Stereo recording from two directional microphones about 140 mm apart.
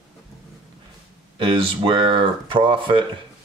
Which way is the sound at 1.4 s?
40° right (ahead or behind).